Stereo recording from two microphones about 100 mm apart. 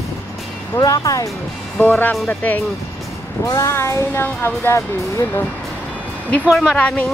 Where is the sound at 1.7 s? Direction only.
15° left (ahead or behind).